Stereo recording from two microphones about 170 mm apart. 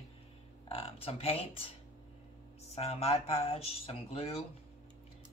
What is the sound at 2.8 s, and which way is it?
Speech, 35° left (ahead or behind).